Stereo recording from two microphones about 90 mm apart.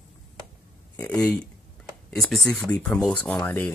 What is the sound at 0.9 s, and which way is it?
Speech, 15° left (ahead or behind).